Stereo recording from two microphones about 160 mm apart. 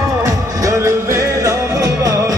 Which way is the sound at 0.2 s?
20° right (ahead or behind).